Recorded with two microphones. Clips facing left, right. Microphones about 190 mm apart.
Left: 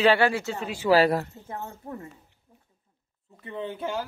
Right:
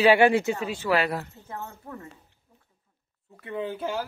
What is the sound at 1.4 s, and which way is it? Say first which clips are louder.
Speech: left 2 dB; 25° left (ahead or behind).